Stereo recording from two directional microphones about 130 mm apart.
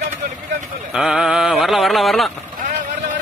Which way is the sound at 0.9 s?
5° right (ahead or behind).